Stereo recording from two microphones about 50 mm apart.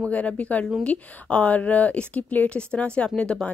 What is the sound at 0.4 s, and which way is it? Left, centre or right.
Speech, left.